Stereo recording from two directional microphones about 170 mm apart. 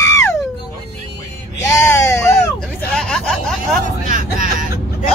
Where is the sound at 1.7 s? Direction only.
15° left (ahead or behind).